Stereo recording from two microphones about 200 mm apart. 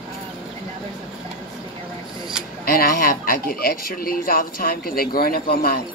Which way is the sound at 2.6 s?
45° left (ahead or behind).